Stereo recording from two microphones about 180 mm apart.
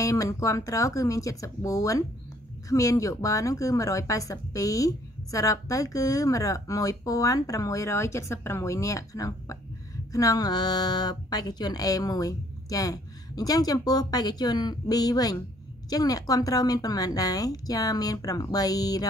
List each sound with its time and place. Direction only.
0.0 s speech: 15° left (ahead or behind)